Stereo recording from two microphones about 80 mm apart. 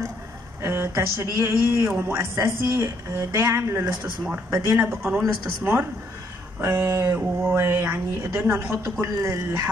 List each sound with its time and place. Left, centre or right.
0.6 s speech: right
4.7 s speech: right